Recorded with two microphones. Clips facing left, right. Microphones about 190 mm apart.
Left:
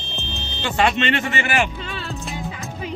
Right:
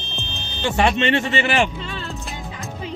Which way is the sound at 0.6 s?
20° right (ahead or behind).